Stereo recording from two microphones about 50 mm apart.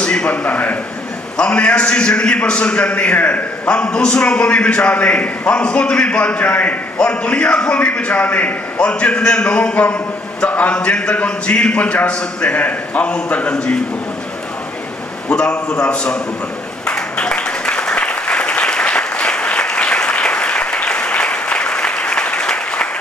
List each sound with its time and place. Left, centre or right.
0.0 s a man's voice: left
1.3 s a man's voice: centre
3.6 s a man's voice: centre
12.5 s a man's voice: left
13.5 s a man's voice: centre
15.2 s a man's voice: centre
16.8 s applause: centre